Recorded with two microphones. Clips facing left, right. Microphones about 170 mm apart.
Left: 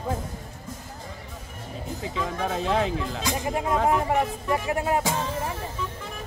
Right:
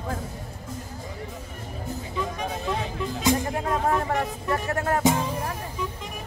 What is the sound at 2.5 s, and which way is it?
Speech, 90° left.